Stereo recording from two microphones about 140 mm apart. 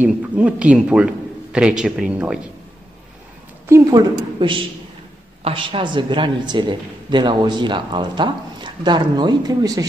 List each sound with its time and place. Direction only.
0.0 s a man's voice: 10° right (ahead or behind)
3.6 s a woman's voice: 25° right (ahead or behind)